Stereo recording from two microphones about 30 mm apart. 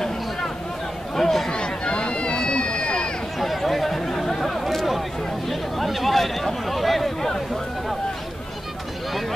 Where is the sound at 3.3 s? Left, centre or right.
Centre.